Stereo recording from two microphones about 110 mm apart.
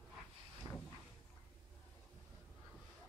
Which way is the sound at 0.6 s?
35° right (ahead or behind).